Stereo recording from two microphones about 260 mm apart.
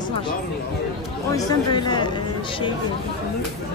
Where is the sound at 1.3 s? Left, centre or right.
Centre.